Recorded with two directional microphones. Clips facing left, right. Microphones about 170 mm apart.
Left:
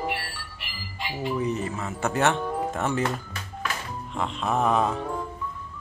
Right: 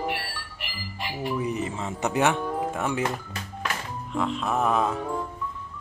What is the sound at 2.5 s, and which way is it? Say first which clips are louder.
Music: even; 5° right (ahead or behind).